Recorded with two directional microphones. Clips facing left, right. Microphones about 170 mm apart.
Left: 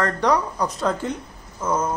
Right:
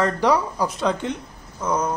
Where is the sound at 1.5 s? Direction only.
5° left (ahead or behind).